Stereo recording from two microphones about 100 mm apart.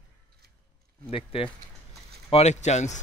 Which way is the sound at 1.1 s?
65° left (ahead or behind).